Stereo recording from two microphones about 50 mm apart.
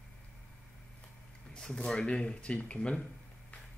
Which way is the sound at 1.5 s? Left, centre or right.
Centre.